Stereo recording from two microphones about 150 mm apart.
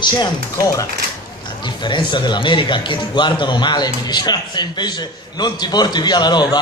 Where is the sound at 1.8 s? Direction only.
30° left (ahead or behind).